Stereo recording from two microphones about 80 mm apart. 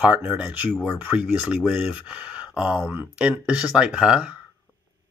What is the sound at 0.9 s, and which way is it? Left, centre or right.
Speech, right.